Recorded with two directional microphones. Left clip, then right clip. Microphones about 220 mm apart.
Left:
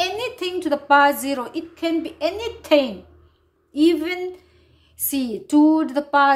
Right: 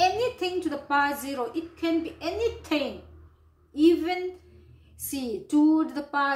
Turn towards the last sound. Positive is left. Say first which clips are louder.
# left 10 dB
turn(degrees=45)  # may be behind; listen again after turning